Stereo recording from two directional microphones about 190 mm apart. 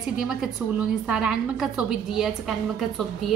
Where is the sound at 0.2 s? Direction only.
5° right (ahead or behind).